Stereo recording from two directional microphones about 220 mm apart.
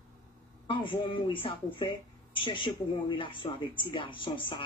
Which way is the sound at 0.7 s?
20° left (ahead or behind).